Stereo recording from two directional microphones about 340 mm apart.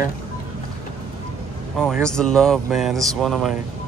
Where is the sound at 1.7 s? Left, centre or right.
Centre.